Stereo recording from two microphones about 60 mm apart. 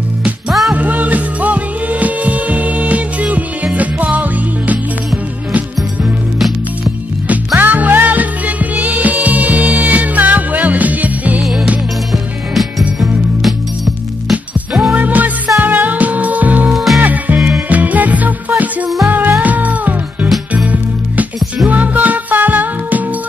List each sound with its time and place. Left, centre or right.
0.5 s music: centre
0.7 s music: right
7.2 s music: right
12.1 s music: centre
14.7 s music: centre
15.0 s music: right
16.7 s music: centre
17.0 s music: right
21.6 s music: right